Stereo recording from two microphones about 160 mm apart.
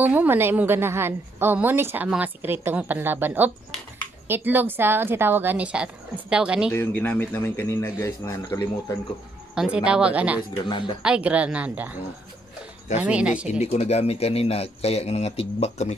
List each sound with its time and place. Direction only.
0.0 s a woman's voice: 10° right (ahead or behind)
6.7 s a man's voice: 15° left (ahead or behind)
9.8 s a woman's voice: 5° right (ahead or behind)
10.5 s speech: 30° left (ahead or behind)
11.0 s a woman's voice: 5° right (ahead or behind)
13.0 s a woman's voice: 10° right (ahead or behind)
13.5 s a man's voice: 40° left (ahead or behind)